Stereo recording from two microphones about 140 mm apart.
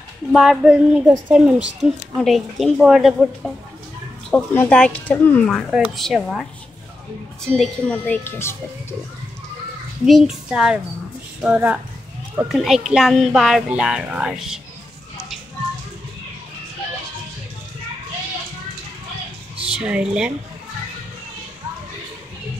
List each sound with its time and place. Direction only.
0.3 s speech: centre (ahead or behind)
7.5 s speech: centre (ahead or behind)
8.0 s speech: 15° left (ahead or behind)
10.0 s speech: 5° right (ahead or behind)
19.8 s speech: 5° right (ahead or behind)